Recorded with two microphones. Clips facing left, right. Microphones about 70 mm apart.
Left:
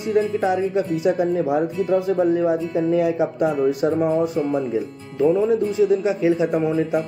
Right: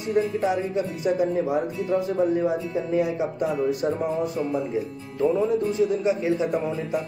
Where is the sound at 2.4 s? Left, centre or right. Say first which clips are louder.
Left 5 dB; left.